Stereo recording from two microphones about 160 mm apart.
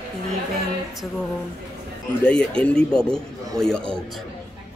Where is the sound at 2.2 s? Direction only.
5° left (ahead or behind).